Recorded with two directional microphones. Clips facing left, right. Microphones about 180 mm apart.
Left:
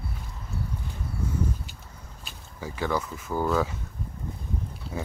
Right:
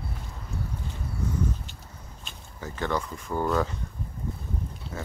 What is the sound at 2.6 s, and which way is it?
Speech, 10° left (ahead or behind).